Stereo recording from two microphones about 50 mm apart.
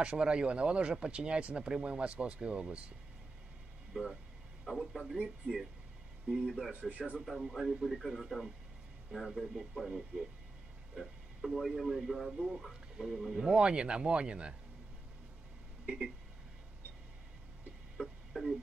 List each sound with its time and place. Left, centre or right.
0.0 s speech: right
3.9 s speech: centre
6.2 s speech: centre
6.7 s speech: right
7.2 s speech: centre
13.4 s speech: centre
15.8 s a sound: centre
17.9 s a sound: centre